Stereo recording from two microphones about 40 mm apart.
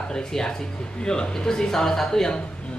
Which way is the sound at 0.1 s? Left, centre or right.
Centre.